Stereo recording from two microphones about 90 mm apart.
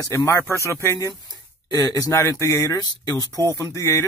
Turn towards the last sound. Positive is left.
turn(degrees=35)  # may be behind; listen again after turning